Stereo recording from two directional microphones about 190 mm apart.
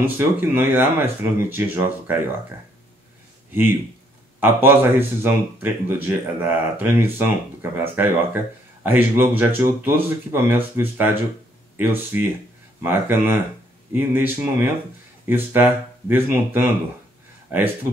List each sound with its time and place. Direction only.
0.2 s speech: 10° right (ahead or behind)
4.4 s speech: 10° right (ahead or behind)